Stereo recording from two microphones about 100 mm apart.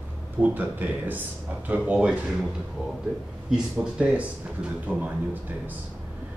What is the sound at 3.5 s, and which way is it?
Speech, 10° right (ahead or behind).